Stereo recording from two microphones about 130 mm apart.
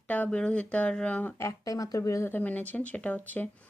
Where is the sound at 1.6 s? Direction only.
30° left (ahead or behind).